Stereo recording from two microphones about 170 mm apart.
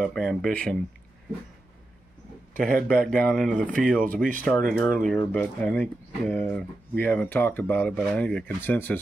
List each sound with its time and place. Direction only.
0.1 s speech: centre (ahead or behind)
2.6 s speech: 50° right (ahead or behind)
3.1 s speech: 5° left (ahead or behind)
3.8 s speech: 55° right (ahead or behind)
5.0 s speech: 5° left (ahead or behind)